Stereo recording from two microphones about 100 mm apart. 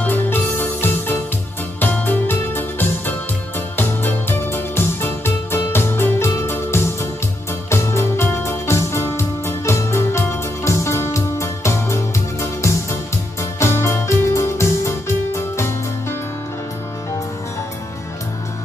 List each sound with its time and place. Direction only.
0.0 s music: 20° left (ahead or behind)